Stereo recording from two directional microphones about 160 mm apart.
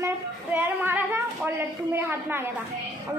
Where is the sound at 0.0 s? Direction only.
10° right (ahead or behind).